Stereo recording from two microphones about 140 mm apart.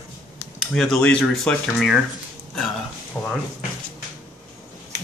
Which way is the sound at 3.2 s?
Centre (ahead or behind).